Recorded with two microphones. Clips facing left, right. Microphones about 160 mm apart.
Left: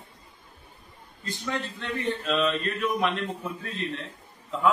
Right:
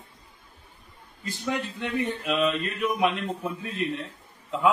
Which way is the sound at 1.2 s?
15° right (ahead or behind).